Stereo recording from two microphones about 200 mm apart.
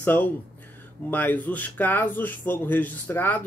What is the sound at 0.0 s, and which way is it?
Speech, 10° left (ahead or behind).